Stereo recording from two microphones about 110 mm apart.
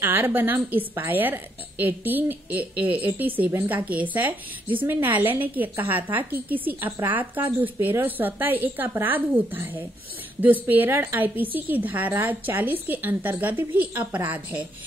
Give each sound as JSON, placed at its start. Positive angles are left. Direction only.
{"t": 0.0, "sound": "a woman's voice", "side_deg": -20}